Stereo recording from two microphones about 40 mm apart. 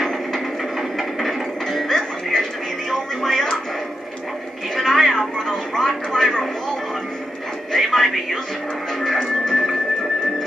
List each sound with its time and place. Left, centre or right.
0.0 s music: centre
4.7 s television: centre
5.1 s a sound: centre
7.7 s speech: centre
9.0 s music: centre